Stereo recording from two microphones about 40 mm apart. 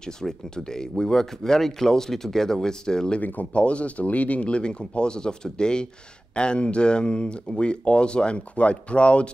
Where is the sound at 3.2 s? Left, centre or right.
Left.